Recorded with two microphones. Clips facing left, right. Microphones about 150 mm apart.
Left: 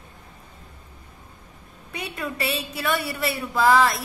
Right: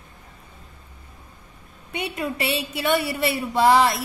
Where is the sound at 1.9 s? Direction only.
25° right (ahead or behind).